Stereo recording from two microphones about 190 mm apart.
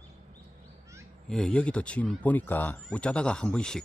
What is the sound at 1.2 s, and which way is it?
Speech, 5° left (ahead or behind).